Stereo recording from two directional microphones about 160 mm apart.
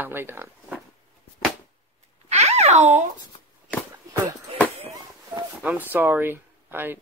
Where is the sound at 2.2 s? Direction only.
40° right (ahead or behind).